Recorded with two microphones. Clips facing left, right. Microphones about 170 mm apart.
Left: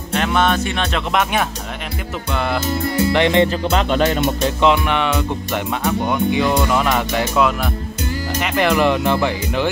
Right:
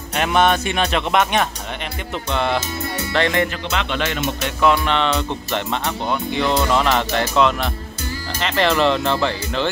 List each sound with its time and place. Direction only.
0.1 s speech: 15° right (ahead or behind)
0.9 s speech: centre (ahead or behind)
3.1 s speech: 15° left (ahead or behind)
3.7 s speech: 40° left (ahead or behind)
4.4 s music: 25° left (ahead or behind)
4.8 s speech: 10° left (ahead or behind)